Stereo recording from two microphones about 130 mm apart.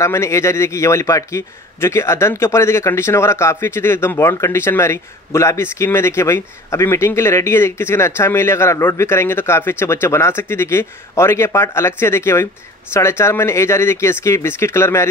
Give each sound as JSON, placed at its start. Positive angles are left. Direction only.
{"t": 0.0, "sound": "a man's voice", "side_deg": 20}